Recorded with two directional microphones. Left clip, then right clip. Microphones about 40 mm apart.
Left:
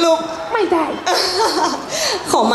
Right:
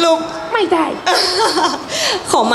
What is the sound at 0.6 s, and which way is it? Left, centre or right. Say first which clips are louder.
Speech: right 2 dB; left.